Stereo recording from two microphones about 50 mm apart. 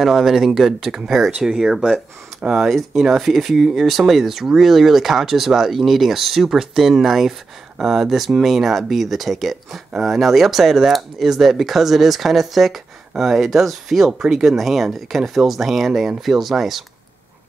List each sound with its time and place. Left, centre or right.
0.0 s speech: centre
2.4 s speech: right
2.9 s speech: centre